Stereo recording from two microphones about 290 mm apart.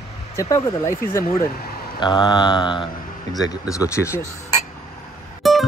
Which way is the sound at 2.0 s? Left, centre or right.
Centre.